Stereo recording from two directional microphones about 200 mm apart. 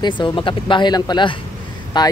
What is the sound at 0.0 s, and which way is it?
Speech, 20° left (ahead or behind).